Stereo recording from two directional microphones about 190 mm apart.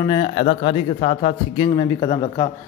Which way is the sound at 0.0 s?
25° left (ahead or behind).